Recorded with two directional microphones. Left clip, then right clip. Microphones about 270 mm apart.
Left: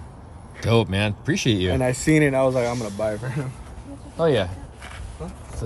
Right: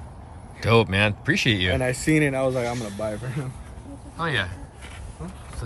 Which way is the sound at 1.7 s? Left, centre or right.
Left.